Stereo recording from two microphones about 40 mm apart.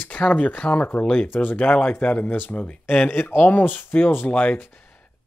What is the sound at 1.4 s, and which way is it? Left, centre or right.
Speech, left.